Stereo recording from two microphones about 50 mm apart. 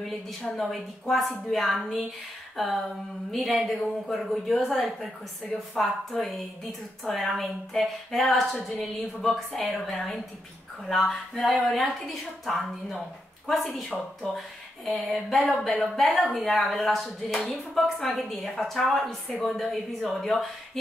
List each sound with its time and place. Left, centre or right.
0.0 s a woman's voice: centre
5.8 s a woman's voice: centre
9.9 s a sound: centre
11.5 s a woman's voice: centre